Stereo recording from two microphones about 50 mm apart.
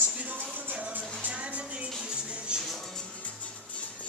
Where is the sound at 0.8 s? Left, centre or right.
Right.